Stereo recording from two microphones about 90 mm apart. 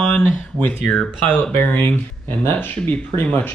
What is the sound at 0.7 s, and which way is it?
Speech, 15° left (ahead or behind).